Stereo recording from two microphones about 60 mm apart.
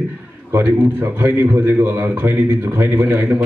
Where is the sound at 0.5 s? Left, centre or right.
Right.